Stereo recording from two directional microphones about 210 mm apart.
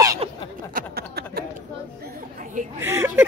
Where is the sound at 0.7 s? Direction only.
45° right (ahead or behind).